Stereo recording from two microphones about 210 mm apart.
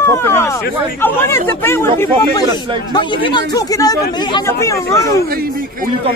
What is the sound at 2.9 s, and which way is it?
Speech, 20° left (ahead or behind).